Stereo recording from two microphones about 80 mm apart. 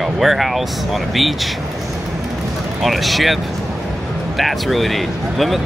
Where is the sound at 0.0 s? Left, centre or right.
Centre.